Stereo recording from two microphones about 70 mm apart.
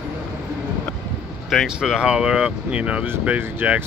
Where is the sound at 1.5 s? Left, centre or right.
Centre.